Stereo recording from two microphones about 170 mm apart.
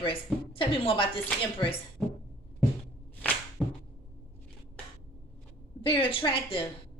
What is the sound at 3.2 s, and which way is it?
Whip, 10° left (ahead or behind).